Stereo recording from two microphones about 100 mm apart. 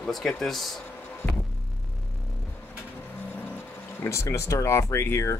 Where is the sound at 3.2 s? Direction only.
20° left (ahead or behind).